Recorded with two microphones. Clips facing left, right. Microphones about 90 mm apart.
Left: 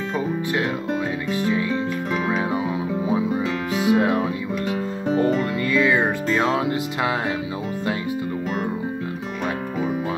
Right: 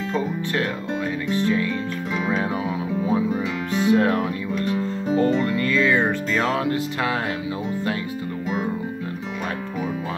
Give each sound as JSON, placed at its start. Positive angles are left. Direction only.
{"t": 1.3, "sound": "music", "side_deg": 15}